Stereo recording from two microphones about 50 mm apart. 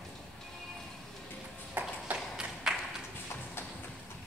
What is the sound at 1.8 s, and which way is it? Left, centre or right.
Ping, right.